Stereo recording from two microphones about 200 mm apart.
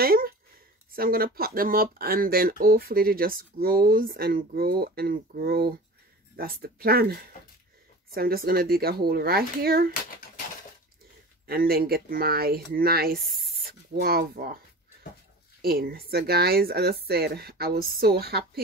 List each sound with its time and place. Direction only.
0.0 s a sound: 50° right (ahead or behind)
0.9 s speech: 50° right (ahead or behind)
11.4 s speech: 50° right (ahead or behind)
15.6 s speech: 50° right (ahead or behind)